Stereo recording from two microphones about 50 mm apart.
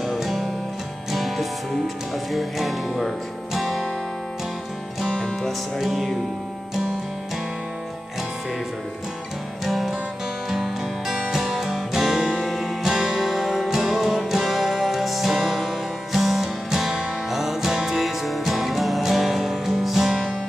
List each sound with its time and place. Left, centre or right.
0.0 s music: centre
5.1 s music: centre
5.8 s music: centre
9.7 s music: centre